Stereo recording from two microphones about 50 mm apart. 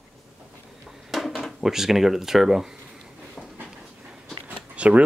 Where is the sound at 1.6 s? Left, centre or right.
Centre.